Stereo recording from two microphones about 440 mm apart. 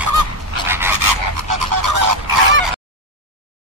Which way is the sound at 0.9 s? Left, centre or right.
Right.